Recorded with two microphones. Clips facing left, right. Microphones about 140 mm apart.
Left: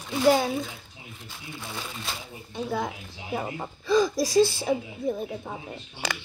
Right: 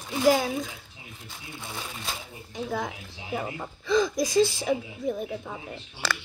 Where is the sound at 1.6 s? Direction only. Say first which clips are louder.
Even; 10° right (ahead or behind).